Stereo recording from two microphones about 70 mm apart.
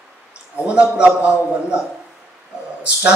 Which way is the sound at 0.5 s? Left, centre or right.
Centre.